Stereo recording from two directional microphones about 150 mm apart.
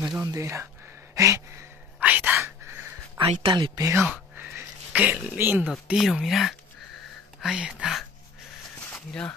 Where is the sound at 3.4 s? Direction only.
30° right (ahead or behind); by 5.2 s 10° right (ahead or behind).